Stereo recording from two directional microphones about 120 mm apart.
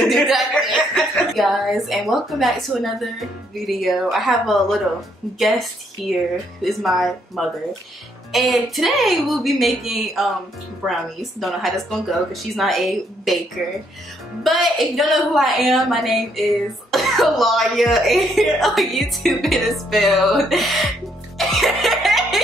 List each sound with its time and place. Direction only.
0.0 s chuckle: centre (ahead or behind)
0.9 s speech: centre (ahead or behind)
14.4 s speech: centre (ahead or behind)
21.4 s music: centre (ahead or behind)